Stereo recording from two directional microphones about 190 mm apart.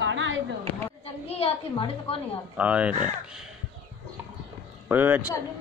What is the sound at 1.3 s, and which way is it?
Speech, 30° left (ahead or behind).